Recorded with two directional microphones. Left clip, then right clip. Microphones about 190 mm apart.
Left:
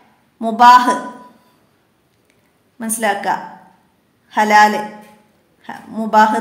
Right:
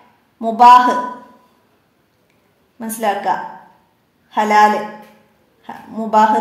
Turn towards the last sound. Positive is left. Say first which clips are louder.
# left 1 dB
turn(degrees=10)  # may be behind; listen again after turning